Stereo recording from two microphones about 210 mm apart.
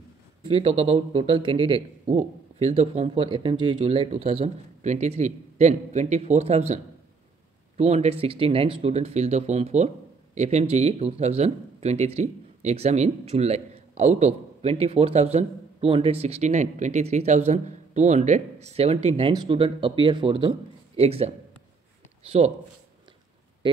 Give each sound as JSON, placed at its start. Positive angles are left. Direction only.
{"t": 0.5, "sound": "a man's voice", "side_deg": -30}